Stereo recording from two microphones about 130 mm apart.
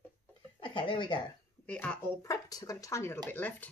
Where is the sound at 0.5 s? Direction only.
40° left (ahead or behind).